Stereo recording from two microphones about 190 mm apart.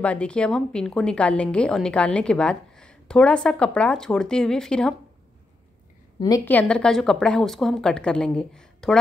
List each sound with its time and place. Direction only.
0.0 s a woman's voice: 5° left (ahead or behind)
6.1 s a woman's voice: 20° left (ahead or behind)
6.4 s a woman's voice: 5° left (ahead or behind)